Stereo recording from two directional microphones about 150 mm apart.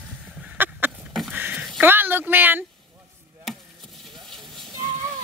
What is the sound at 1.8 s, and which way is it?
Speech, 15° right (ahead or behind).